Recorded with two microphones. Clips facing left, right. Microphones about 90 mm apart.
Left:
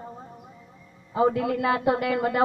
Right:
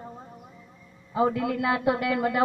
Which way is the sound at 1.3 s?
45° left (ahead or behind).